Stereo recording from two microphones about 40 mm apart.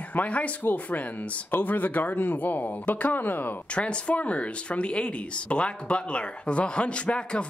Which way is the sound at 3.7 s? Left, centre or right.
Left.